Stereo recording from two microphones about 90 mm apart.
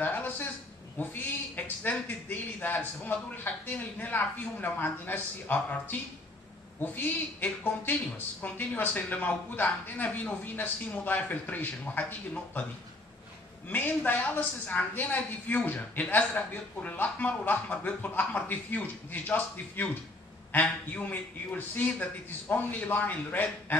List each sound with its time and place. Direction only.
0.0 s a sound: 20° left (ahead or behind)
0.9 s a man's voice: 20° left (ahead or behind)
13.7 s a woman's voice: 20° left (ahead or behind)